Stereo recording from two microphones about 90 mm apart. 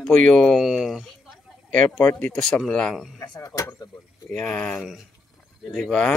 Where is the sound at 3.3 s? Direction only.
40° left (ahead or behind).